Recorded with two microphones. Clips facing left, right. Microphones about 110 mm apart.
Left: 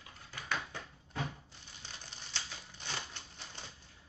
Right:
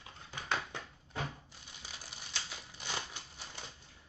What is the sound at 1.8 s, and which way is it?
Crumpling, 10° right (ahead or behind).